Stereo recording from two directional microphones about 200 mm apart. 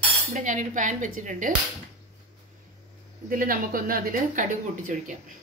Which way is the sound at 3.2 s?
45° right (ahead or behind).